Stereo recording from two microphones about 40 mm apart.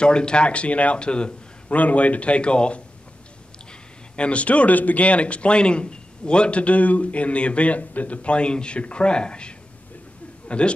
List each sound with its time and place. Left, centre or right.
0.0 s a man's voice: left
1.8 s speech: left
4.2 s speech: left
10.5 s speech: left